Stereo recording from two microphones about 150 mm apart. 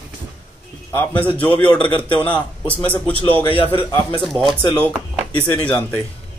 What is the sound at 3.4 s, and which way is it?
Speech, 35° left (ahead or behind).